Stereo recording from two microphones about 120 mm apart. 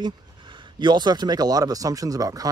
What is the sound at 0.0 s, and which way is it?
Speech, 40° right (ahead or behind).